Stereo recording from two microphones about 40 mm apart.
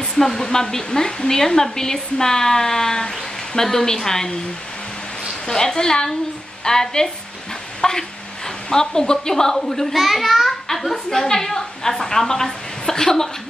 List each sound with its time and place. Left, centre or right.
0.0 s speech: centre
5.5 s a child's voice: centre